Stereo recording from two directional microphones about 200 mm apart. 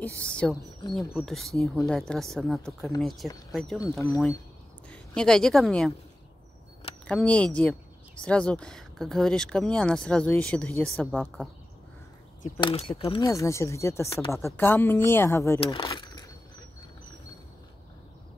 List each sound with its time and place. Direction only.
0.0 s speech: 5° left (ahead or behind)
4.8 s a woman's voice: 5° left (ahead or behind)
7.1 s speech: 5° left (ahead or behind)
12.5 s speech: 25° left (ahead or behind)
13.3 s speech: 15° left (ahead or behind)
15.6 s speech: 25° left (ahead or behind)